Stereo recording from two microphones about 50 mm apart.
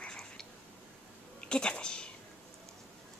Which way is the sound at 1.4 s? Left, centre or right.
Centre.